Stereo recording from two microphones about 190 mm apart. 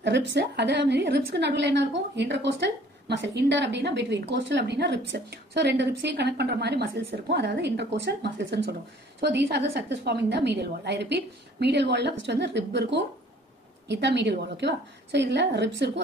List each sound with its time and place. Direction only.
0.0 s a woman's voice: 65° right (ahead or behind)